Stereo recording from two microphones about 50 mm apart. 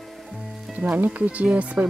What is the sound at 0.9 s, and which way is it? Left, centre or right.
Speech, right.